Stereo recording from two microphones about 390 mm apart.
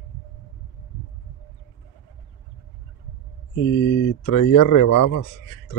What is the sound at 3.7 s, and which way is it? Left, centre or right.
Speech, left.